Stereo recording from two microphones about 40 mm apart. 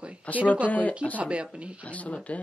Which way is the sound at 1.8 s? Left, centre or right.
Left.